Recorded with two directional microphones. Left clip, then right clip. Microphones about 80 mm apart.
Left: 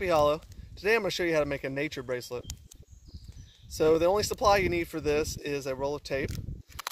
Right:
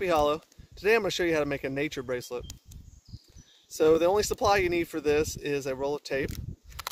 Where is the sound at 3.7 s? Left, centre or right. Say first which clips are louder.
Right 1 dB; right.